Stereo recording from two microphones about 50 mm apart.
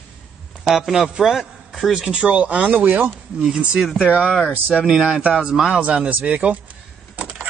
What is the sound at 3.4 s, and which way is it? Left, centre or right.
Speech, right.